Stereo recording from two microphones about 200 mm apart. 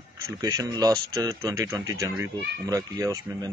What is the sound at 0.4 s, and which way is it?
Speech, 15° right (ahead or behind).